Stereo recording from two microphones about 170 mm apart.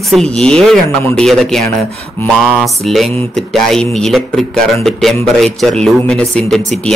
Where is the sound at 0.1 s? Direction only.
5° left (ahead or behind).